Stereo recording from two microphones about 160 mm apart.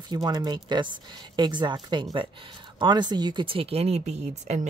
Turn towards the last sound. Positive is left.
turn(degrees=-45)  # may be behind; listen again after turning